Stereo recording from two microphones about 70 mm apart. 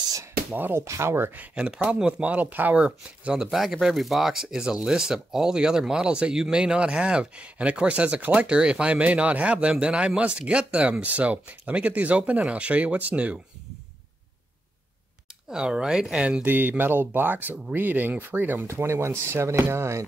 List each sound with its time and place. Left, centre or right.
0.1 s a sound: right
0.6 s speech: right
0.8 s speech: right
1.3 s speech: right
2.8 s speech: centre
15.5 s speech: centre
16.4 s speech: right